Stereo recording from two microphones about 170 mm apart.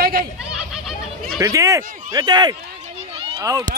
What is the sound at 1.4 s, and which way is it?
Speech, 20° right (ahead or behind).